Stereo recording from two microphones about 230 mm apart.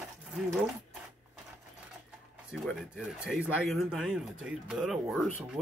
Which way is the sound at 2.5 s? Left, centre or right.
Centre.